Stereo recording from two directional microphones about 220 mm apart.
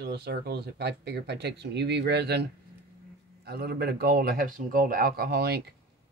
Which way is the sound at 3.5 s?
45° right (ahead or behind).